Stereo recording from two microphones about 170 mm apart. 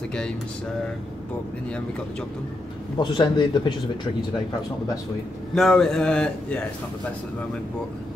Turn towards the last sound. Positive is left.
turn(degrees=5)  # may be behind; listen again after turning